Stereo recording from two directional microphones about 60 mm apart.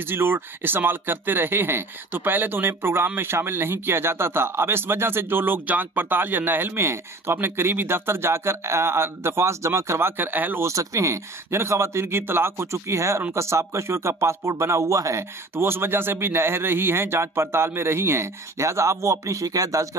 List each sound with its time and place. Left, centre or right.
0.0 s a man's voice: right
10.6 s a man's voice: right
15.5 s a man's voice: right